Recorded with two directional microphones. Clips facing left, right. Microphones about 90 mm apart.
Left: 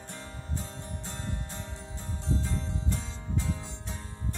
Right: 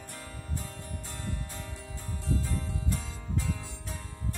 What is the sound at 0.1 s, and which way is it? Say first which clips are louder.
Music: left 1 dB; 25° left (ahead or behind).